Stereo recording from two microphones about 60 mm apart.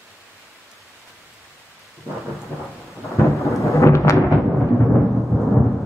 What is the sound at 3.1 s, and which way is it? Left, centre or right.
Thunder, left.